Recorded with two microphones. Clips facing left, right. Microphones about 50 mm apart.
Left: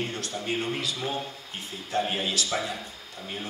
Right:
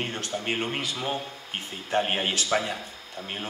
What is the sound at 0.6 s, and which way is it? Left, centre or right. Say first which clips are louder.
Speech: right 1 dB; right.